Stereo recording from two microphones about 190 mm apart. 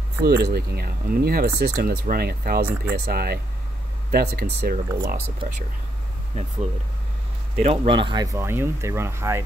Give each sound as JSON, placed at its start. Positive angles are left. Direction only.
{"t": 0.2, "sound": "speech", "side_deg": -55}
{"t": 6.4, "sound": "speech", "side_deg": -35}
{"t": 7.6, "sound": "speech", "side_deg": -30}